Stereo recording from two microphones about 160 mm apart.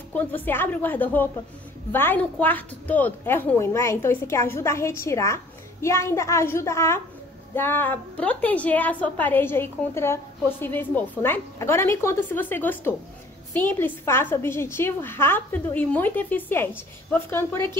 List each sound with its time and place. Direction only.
0.1 s a woman's voice: 10° left (ahead or behind)